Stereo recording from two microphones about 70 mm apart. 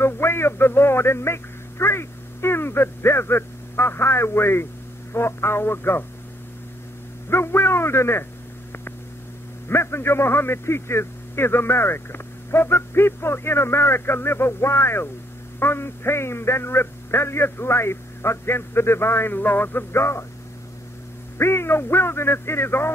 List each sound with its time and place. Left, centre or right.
0.0 s a sound: left
5.1 s a man's voice: left
7.2 s a man's voice: left
9.7 s a man's voice: left
21.4 s a man's voice: left